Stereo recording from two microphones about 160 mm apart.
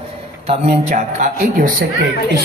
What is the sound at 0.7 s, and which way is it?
A man's voice, 50° right (ahead or behind).